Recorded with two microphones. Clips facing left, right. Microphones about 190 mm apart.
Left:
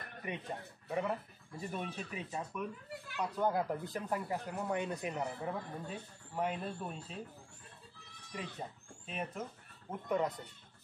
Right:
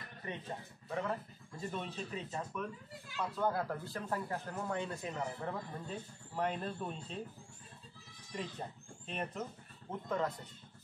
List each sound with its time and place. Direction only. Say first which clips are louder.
0.2 s speech: left 2 dB; 15° left (ahead or behind)
8.5 s speech: even; 5° left (ahead or behind)